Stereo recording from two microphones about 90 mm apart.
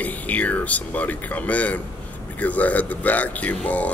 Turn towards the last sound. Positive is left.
turn(degrees=15)  # may be behind; listen again after turning